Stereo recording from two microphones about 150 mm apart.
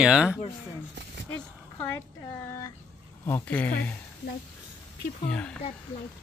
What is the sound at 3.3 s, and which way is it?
Speech, 15° left (ahead or behind).